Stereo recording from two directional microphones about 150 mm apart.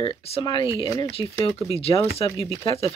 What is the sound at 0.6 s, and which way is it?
Speech, 20° right (ahead or behind).